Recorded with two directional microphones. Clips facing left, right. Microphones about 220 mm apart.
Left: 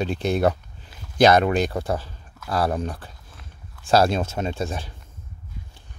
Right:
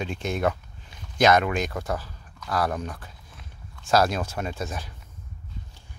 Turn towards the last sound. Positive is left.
turn(degrees=30)  # may be behind; listen again after turning